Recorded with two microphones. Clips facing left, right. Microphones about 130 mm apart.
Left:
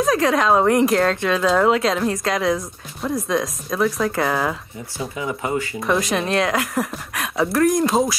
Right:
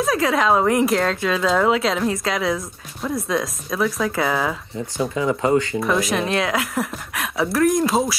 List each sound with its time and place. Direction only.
0.0 s speech: centre (ahead or behind)
5.1 s speech: 30° right (ahead or behind)
5.8 s speech: centre (ahead or behind)